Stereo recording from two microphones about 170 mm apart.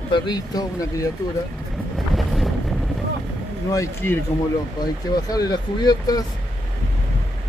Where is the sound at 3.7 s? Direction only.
15° left (ahead or behind).